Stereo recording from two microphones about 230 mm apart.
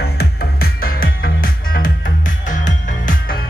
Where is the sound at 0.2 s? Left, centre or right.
Left.